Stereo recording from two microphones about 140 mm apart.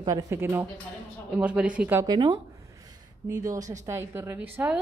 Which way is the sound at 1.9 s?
30° right (ahead or behind).